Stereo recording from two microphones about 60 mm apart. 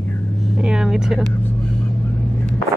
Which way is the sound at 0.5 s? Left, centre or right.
Centre.